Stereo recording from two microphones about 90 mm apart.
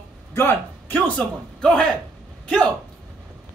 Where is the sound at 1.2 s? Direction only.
10° left (ahead or behind).